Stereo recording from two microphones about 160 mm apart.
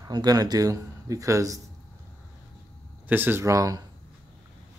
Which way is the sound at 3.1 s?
10° right (ahead or behind).